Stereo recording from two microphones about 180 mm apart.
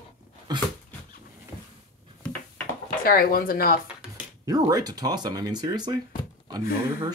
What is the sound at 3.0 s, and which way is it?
Speech, 55° left (ahead or behind).